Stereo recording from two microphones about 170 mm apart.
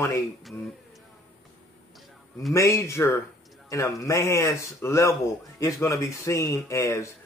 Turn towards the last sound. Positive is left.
turn(degrees=15)  # may be behind; listen again after turning